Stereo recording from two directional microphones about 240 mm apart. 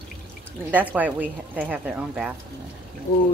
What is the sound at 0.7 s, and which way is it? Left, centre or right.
A woman's voice, centre.